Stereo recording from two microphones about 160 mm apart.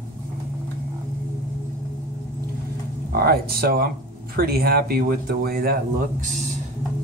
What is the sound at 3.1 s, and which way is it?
Speech, 75° right (ahead or behind).